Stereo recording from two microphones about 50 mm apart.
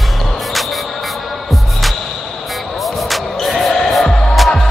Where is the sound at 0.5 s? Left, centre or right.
Centre.